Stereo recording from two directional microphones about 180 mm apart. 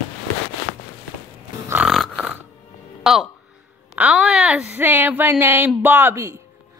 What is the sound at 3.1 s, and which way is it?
Music, 5° right (ahead or behind).